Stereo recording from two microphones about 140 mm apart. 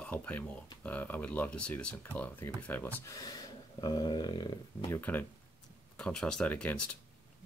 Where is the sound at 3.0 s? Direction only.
25° left (ahead or behind).